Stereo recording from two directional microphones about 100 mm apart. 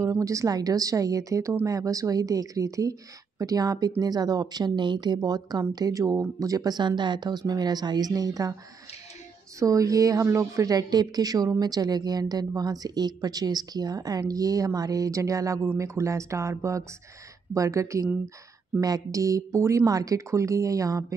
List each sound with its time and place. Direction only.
0.0 s speech: 35° right (ahead or behind)
9.6 s speech: 35° right (ahead or behind)